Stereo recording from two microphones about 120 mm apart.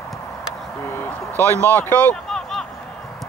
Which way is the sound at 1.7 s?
15° left (ahead or behind).